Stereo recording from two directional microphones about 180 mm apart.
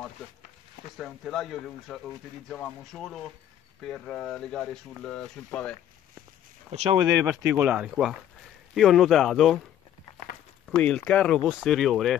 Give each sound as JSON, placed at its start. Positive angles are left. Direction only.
{"t": 0.9, "sound": "speech", "side_deg": 0}
{"t": 6.7, "sound": "speech", "side_deg": -30}
{"t": 7.5, "sound": "speech", "side_deg": -5}
{"t": 10.8, "sound": "speech", "side_deg": 5}